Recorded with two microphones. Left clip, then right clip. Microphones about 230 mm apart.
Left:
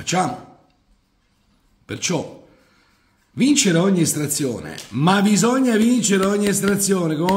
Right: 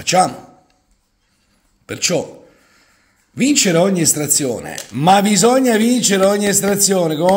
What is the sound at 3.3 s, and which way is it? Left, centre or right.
Speech, centre.